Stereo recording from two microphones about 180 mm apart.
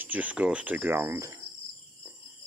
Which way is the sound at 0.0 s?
10° right (ahead or behind).